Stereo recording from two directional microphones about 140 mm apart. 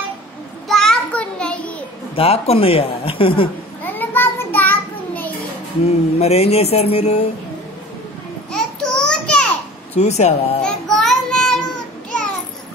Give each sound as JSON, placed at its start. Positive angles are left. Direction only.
{"t": 0.7, "sound": "a sound", "side_deg": 5}
{"t": 2.1, "sound": "speech", "side_deg": 45}
{"t": 3.8, "sound": "child singing", "side_deg": 15}
{"t": 5.9, "sound": "speech", "side_deg": 45}
{"t": 8.5, "sound": "a sound", "side_deg": 5}
{"t": 9.9, "sound": "speech", "side_deg": 55}
{"t": 10.6, "sound": "child singing", "side_deg": 5}